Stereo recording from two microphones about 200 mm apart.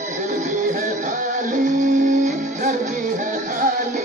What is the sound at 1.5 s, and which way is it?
Music, 40° right (ahead or behind).